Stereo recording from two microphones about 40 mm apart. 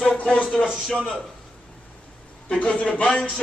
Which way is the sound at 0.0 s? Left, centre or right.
Left.